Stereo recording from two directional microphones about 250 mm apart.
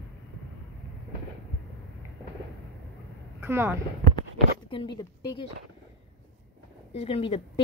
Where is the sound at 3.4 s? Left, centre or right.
Centre.